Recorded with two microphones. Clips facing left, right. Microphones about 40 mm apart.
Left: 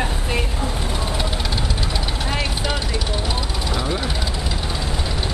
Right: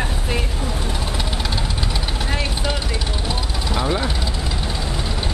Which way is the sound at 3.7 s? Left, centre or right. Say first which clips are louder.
Right 4 dB; centre.